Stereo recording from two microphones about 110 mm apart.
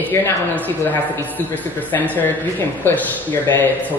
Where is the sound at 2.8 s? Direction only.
20° left (ahead or behind).